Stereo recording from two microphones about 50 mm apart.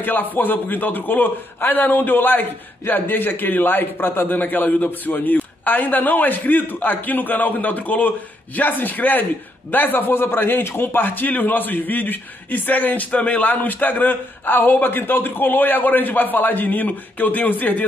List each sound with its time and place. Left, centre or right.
0.0 s a man's voice: left
13.5 s a man's voice: left